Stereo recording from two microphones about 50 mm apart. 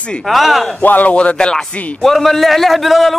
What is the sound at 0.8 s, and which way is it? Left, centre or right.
Speech, left.